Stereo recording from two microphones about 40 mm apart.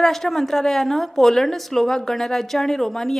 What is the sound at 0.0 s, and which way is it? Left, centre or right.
A woman's voice, centre.